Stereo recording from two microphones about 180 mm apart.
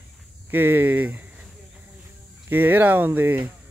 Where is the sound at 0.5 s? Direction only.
10° right (ahead or behind).